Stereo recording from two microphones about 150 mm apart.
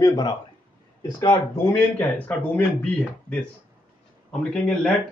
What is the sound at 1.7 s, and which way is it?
A man's voice, 10° left (ahead or behind).